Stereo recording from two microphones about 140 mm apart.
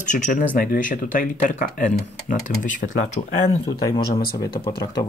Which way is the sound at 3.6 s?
25° left (ahead or behind).